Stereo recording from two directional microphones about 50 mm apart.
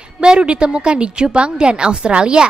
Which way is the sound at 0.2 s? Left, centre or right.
Centre.